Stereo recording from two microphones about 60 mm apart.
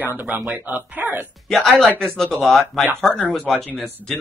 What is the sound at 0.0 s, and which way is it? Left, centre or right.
Speech, right.